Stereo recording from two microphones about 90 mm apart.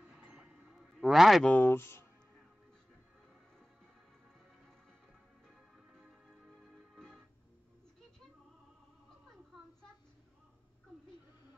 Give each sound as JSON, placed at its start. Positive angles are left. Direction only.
{"t": 0.0, "sound": "a sound", "side_deg": -10}
{"t": 1.4, "sound": "speech", "side_deg": 20}
{"t": 5.9, "sound": "music", "side_deg": 0}